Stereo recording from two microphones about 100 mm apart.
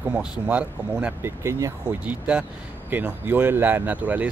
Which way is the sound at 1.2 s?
25° right (ahead or behind).